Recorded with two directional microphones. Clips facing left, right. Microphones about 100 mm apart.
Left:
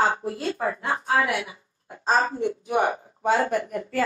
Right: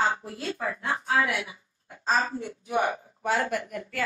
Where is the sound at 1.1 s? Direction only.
50° left (ahead or behind).